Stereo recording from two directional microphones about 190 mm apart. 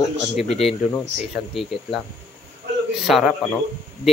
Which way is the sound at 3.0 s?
Centre (ahead or behind).